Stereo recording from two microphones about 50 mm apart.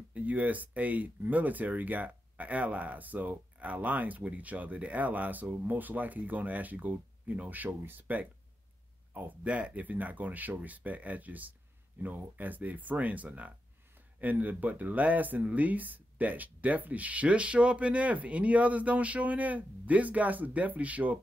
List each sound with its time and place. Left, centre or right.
0.1 s speech: right
9.4 s speech: right